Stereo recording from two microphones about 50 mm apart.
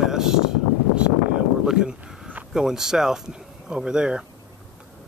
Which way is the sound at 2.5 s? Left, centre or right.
Centre.